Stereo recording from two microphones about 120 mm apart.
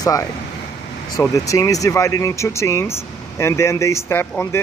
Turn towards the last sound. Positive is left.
turn(degrees=20)  # may be behind; listen again after turning